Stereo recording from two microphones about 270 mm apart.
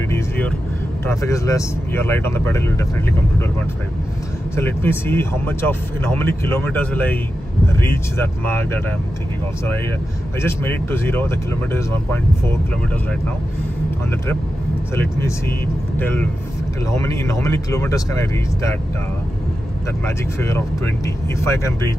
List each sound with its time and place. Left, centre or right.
0.1 s vehicle: centre
1.0 s speech: centre
4.6 s speech: centre
10.4 s speech: centre
15.1 s speech: centre
20.3 s speech: centre